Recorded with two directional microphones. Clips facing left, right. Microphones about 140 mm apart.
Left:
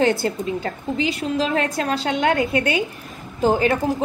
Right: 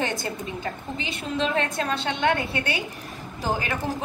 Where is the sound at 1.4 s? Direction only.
35° left (ahead or behind).